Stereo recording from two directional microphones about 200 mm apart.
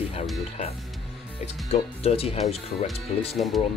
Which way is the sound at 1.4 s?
30° left (ahead or behind).